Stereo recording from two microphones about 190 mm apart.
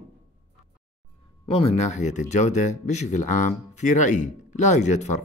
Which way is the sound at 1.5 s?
35° left (ahead or behind).